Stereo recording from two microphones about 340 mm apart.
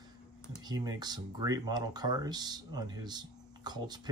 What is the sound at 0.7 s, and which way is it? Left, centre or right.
Speech, centre.